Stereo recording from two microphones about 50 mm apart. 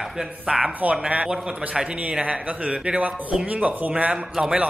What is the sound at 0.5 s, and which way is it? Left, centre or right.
Speech, right.